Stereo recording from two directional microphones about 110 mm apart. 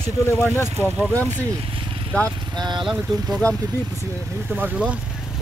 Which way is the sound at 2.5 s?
40° right (ahead or behind).